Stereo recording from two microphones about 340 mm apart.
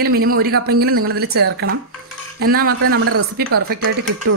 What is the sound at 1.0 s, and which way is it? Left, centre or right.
A man's voice, right.